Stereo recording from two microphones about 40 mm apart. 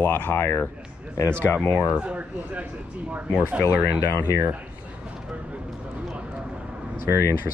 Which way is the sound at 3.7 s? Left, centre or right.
Left.